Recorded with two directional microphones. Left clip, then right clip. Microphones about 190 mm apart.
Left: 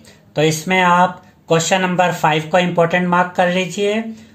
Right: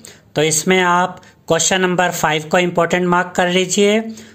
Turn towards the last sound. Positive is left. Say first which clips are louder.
# right 4 dB
turn(degrees=-45)  # may be behind; listen again after turning